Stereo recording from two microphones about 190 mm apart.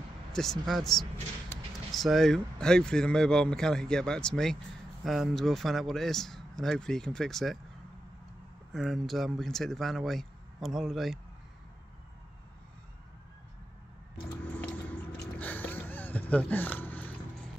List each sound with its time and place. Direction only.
0.3 s speech: centre (ahead or behind)
8.7 s speech: centre (ahead or behind)
14.6 s biting: 10° left (ahead or behind)